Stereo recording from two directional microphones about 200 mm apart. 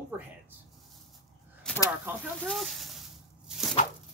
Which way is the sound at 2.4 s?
Centre (ahead or behind).